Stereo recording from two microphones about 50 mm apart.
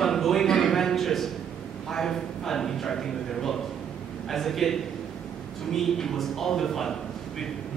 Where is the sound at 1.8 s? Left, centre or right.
Centre.